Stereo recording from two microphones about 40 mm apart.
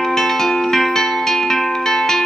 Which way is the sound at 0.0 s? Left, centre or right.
Centre.